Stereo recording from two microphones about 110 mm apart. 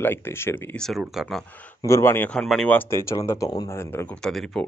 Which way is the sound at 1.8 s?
25° left (ahead or behind).